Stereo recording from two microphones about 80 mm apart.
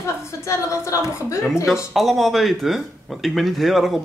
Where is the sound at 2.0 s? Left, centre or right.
Centre.